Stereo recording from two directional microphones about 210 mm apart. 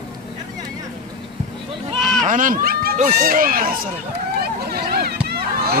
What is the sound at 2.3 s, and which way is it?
Speech, 40° right (ahead or behind).